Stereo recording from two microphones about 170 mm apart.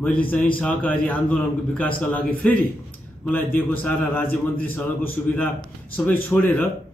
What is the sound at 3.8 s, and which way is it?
A man's voice, 10° left (ahead or behind).